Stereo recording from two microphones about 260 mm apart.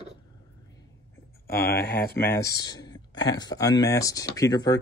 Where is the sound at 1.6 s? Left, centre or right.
Left.